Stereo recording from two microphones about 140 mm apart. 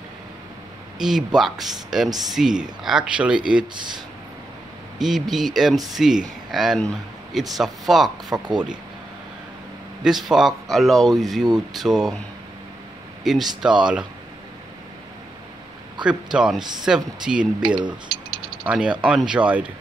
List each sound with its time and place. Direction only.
0.9 s speech: centre (ahead or behind)
4.9 s speech: centre (ahead or behind)
8.3 s speech: 30° right (ahead or behind)
10.0 s speech: centre (ahead or behind)
13.2 s speech: centre (ahead or behind)
16.0 s speech: 5° right (ahead or behind)
17.6 s speech: 35° right (ahead or behind)
18.7 s speech: 10° right (ahead or behind)